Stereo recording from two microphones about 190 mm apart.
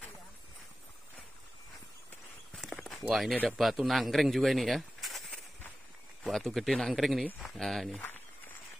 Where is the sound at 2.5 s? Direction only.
Centre (ahead or behind).